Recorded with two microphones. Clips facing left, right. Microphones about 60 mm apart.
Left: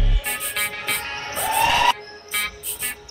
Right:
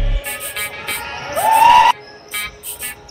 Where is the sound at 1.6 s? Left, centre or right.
Right.